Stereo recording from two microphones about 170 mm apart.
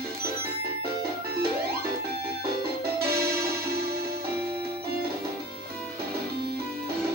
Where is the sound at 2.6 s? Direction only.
65° right (ahead or behind).